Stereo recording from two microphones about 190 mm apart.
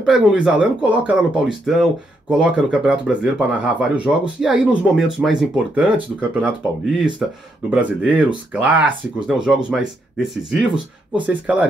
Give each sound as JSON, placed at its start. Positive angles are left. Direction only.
{"t": 0.0, "sound": "speech", "side_deg": -5}